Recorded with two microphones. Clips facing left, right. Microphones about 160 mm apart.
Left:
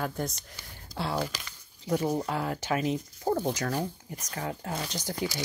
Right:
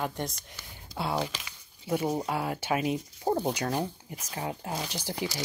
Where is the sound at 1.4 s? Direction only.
10° right (ahead or behind).